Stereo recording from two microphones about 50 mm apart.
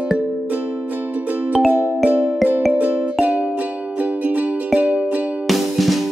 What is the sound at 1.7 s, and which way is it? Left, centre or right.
Music, right.